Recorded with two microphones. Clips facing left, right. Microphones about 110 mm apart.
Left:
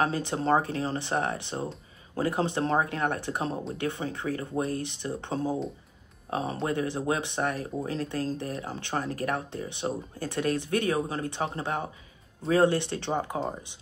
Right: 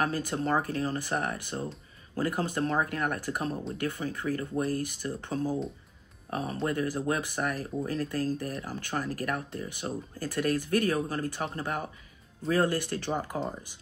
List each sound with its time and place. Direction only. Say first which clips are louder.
0.0 s speech: left 2 dB; 25° left (ahead or behind)